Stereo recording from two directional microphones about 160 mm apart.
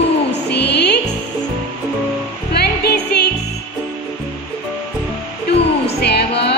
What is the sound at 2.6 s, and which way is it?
Music, 85° left.